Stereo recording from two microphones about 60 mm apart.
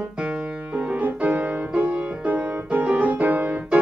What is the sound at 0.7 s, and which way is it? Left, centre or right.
Music, right.